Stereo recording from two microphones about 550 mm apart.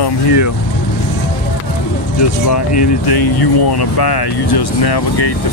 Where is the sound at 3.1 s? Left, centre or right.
Left.